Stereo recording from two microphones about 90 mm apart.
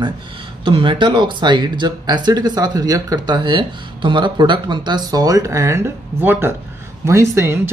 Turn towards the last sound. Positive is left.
turn(degrees=-30)  # may be behind; listen again after turning